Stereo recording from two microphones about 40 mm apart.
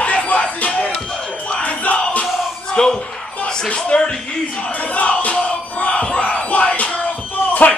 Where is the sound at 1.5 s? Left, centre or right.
Left.